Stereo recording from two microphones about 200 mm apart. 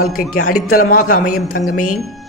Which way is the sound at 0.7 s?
45° left (ahead or behind).